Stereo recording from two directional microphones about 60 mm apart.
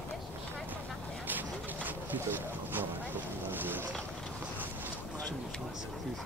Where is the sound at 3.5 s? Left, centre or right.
Right.